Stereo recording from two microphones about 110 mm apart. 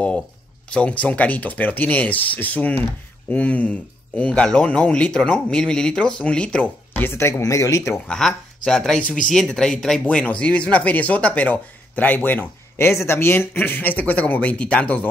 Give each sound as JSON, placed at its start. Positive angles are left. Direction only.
{"t": 0.7, "sound": "speech", "side_deg": 10}
{"t": 8.1, "sound": "speech", "side_deg": 5}